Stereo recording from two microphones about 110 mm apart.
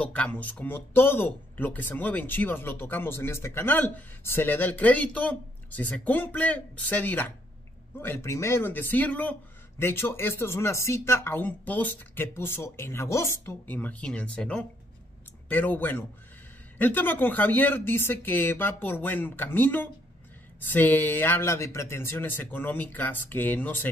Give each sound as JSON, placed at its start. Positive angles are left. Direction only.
{"t": 0.0, "sound": "a man's voice", "side_deg": 10}